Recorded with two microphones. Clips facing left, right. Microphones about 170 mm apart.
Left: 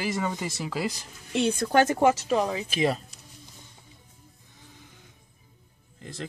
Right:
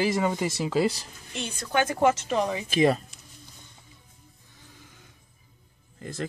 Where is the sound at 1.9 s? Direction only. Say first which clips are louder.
Left 1 dB; 15° left (ahead or behind).